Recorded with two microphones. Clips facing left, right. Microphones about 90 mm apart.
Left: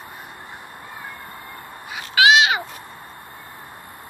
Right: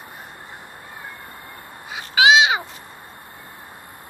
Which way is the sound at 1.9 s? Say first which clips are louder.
Even; 25° right (ahead or behind).